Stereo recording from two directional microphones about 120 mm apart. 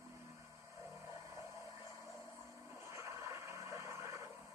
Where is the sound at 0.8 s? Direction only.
25° right (ahead or behind).